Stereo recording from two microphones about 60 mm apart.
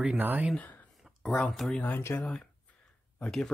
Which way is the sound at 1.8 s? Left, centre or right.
Left.